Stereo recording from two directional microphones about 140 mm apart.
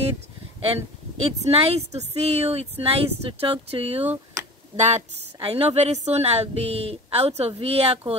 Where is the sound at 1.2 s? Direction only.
50° right (ahead or behind).